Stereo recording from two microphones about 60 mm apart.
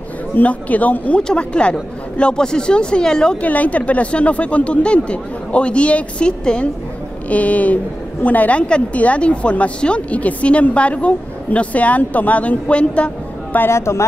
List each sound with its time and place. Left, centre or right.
0.4 s a woman's voice: left
3.4 s a woman's voice: left
13.7 s a woman's voice: left